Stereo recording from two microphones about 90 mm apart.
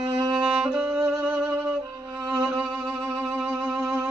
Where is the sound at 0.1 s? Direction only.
50° right (ahead or behind).